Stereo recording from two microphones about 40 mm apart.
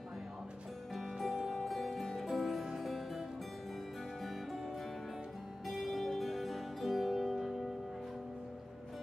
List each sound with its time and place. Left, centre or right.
0.9 s music: centre
5.7 s music: centre